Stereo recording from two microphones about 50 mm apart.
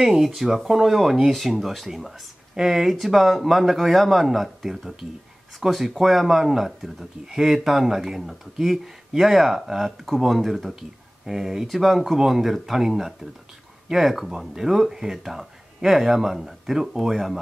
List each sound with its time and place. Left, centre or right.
0.0 s speech: centre